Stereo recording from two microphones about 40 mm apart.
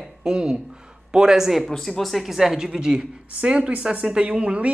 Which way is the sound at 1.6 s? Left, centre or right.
Centre.